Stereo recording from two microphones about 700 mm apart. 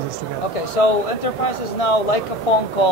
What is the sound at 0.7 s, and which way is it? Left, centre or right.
Speech, left.